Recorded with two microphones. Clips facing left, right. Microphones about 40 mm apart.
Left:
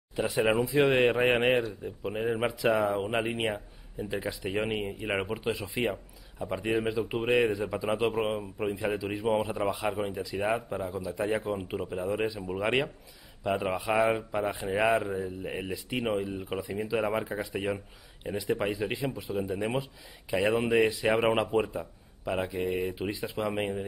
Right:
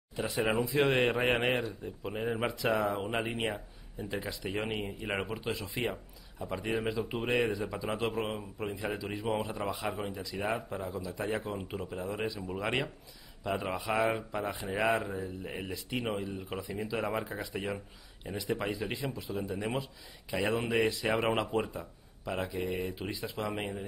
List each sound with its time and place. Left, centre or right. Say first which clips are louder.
0.6 s speech: left 2 dB; centre